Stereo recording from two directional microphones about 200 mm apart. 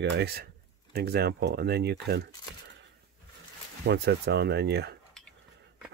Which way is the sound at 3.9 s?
60° right (ahead or behind).